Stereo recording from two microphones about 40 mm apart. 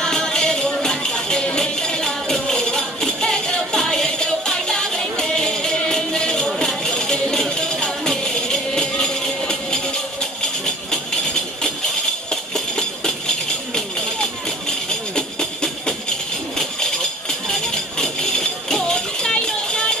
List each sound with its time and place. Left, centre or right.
0.0 s music: centre
12.3 s music: centre
14.9 s music: centre
17.5 s music: centre